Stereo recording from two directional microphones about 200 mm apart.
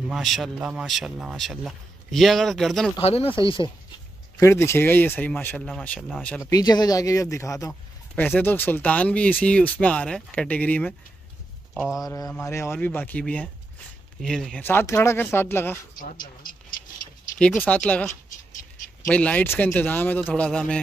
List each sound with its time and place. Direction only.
0.1 s speech: centre (ahead or behind)
3.0 s speech: 30° left (ahead or behind)
4.4 s speech: 15° left (ahead or behind)
6.5 s speech: 20° left (ahead or behind)
11.7 s speech: 5° right (ahead or behind)
12.0 s speech: 15° left (ahead or behind)
17.4 s speech: 5° left (ahead or behind)